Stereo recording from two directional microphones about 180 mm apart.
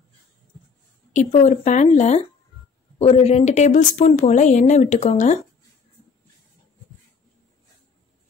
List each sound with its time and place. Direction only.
1.1 s speech: 40° left (ahead or behind)